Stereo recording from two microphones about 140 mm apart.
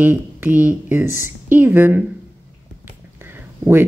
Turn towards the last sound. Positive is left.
turn(degrees=-15)  # may be behind; listen again after turning